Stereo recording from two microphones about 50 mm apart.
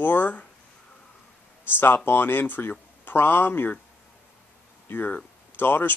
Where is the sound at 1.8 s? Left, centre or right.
Left.